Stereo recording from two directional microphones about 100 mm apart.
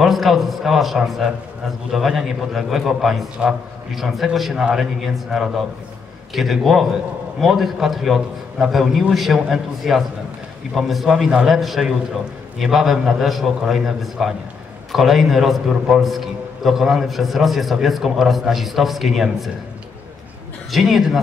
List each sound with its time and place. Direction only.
0.0 s a man's voice: centre (ahead or behind)
20.7 s a man's voice: centre (ahead or behind)